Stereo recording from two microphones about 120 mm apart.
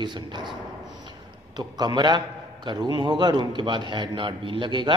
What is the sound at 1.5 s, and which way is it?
A man's voice, 35° right (ahead or behind).